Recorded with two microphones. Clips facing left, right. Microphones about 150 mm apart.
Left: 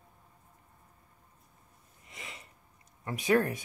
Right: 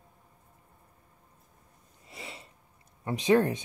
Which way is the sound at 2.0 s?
30° right (ahead or behind).